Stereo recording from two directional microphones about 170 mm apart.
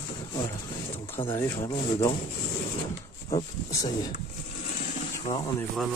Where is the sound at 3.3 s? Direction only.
20° left (ahead or behind).